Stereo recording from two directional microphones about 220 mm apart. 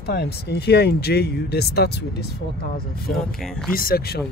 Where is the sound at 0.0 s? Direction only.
50° left (ahead or behind).